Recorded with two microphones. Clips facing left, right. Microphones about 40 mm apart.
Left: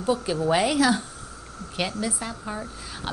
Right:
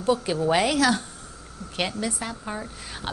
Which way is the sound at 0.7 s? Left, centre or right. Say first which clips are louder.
Even; centre.